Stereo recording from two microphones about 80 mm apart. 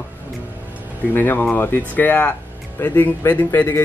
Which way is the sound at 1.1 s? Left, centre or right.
Left.